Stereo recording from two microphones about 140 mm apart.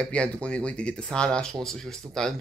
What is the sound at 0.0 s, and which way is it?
Speech, 10° left (ahead or behind).